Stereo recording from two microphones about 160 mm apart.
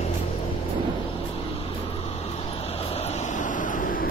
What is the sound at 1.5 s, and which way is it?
Vehicle, 40° left (ahead or behind).